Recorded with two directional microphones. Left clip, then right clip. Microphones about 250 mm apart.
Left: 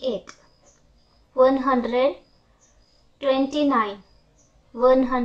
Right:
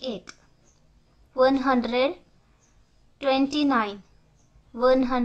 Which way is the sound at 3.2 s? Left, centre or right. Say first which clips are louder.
Left 2 dB; centre.